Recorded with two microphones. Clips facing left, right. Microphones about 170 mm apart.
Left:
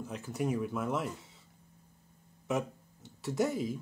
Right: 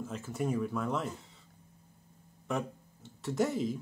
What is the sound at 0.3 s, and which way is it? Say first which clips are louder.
Speech: even; centre (ahead or behind).